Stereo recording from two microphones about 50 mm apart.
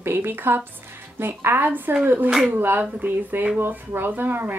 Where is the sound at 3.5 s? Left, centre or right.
Right.